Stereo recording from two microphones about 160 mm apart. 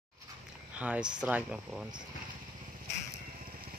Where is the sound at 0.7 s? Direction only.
10° right (ahead or behind).